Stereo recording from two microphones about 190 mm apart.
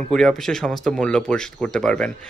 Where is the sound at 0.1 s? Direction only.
Centre (ahead or behind).